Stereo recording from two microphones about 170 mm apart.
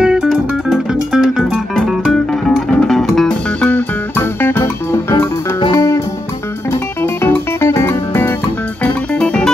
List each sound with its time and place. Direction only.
0.0 s music: 5° right (ahead or behind); by 5.9 s 20° left (ahead or behind)
7.0 s music: 15° left (ahead or behind)